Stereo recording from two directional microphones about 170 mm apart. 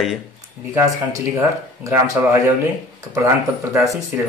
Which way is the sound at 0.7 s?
15° right (ahead or behind).